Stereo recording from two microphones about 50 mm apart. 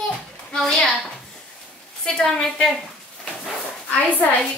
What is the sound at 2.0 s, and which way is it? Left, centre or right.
Speech, centre.